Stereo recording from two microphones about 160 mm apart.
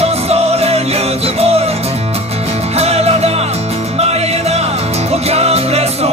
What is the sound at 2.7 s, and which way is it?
Music, 40° right (ahead or behind).